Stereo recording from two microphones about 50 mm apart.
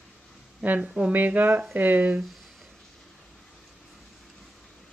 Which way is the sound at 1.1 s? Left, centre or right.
Right.